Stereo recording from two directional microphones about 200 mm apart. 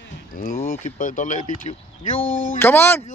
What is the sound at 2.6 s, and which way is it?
Speech, 10° left (ahead or behind).